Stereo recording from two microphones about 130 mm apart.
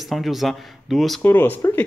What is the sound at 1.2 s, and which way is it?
Speech, 15° left (ahead or behind).